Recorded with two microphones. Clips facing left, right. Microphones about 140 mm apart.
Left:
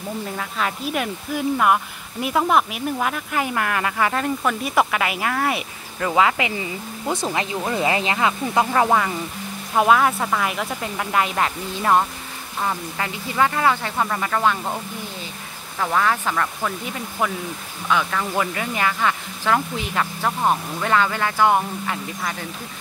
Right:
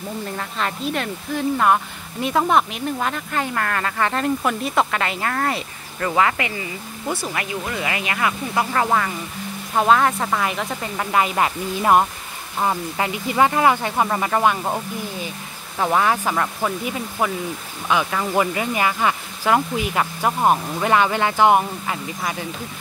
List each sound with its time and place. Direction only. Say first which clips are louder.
0.4 s speech: right 1 dB; 5° left (ahead or behind)
4.1 s speech: right 1 dB; centre (ahead or behind)
4.7 s speech: left 1 dB; 10° left (ahead or behind); by 14.8 s 15° right (ahead or behind)
15.8 s speech: right 2 dB; 20° right (ahead or behind)
17.2 s speech: right 1 dB; 5° right (ahead or behind)